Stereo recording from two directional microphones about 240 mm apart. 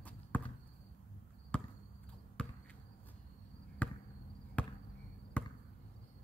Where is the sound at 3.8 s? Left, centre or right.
Centre.